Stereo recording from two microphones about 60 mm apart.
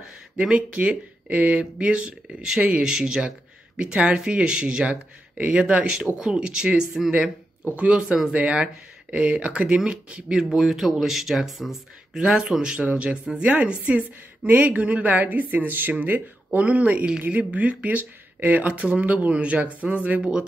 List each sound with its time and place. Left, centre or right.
0.4 s speech: right
7.6 s speech: right; by 12.2 s centre
12.2 s speech: centre